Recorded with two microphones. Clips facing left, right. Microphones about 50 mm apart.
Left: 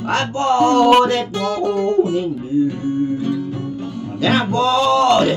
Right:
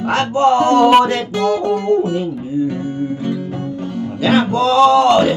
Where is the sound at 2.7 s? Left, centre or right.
Centre.